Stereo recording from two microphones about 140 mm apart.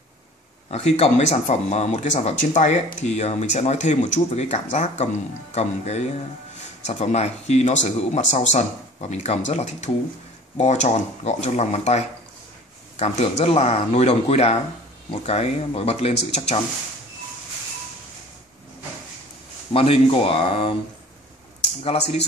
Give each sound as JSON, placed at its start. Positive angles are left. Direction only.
{"t": 0.7, "sound": "speech", "side_deg": 50}
{"t": 13.0, "sound": "speech", "side_deg": 45}
{"t": 19.7, "sound": "speech", "side_deg": 40}
{"t": 21.8, "sound": "speech", "side_deg": 50}